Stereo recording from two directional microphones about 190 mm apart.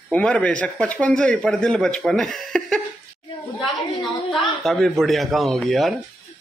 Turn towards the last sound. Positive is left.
turn(degrees=0)  # may be behind; listen again after turning